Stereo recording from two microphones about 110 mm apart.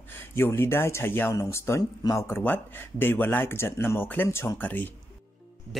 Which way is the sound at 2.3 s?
20° left (ahead or behind).